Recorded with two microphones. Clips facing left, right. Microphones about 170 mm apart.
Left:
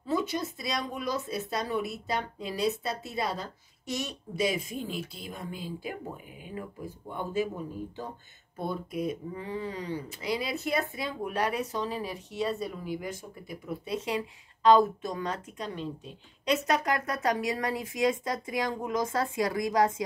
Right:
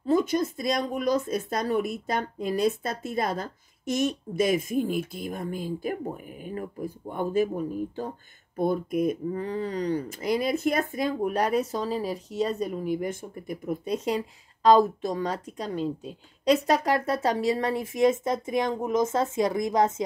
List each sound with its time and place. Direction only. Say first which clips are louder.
0.0 s speech: right 7 dB; 45° right (ahead or behind)
8.5 s speech: right 8 dB; 50° right (ahead or behind); by 19.9 s 20° right (ahead or behind)